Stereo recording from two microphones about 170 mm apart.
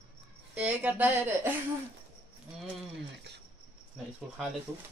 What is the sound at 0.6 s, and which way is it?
Speech, 10° right (ahead or behind).